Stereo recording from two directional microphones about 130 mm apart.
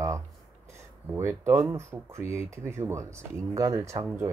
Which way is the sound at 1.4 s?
25° right (ahead or behind).